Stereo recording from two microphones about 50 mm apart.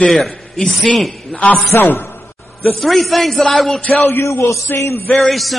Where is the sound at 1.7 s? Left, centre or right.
Left.